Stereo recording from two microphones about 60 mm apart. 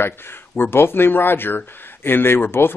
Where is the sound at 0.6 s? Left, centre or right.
Left.